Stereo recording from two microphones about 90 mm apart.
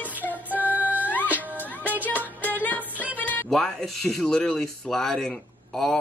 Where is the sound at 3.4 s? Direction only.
Centre (ahead or behind).